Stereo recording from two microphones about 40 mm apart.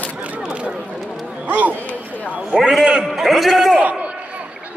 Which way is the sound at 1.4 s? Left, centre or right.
Right.